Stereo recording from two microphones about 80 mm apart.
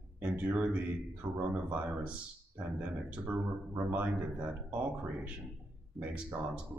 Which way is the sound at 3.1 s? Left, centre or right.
Centre.